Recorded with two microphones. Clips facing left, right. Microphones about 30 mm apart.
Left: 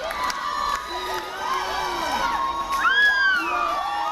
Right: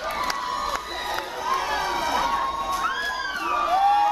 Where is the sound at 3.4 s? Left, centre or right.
Centre.